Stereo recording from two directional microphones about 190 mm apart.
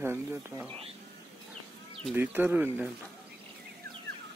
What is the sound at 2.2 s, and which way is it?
Speech, 10° right (ahead or behind).